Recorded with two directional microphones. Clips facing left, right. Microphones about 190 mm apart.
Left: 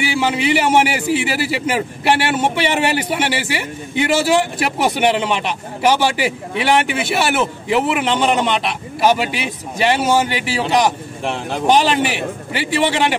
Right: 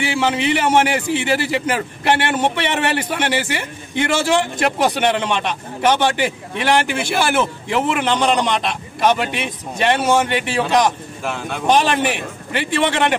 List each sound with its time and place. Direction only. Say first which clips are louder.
0.0 s a man's voice: left 1 dB; 10° left (ahead or behind)
11.2 s speech: left 3 dB; 30° left (ahead or behind)
12.5 s a man's voice: even; 10° left (ahead or behind)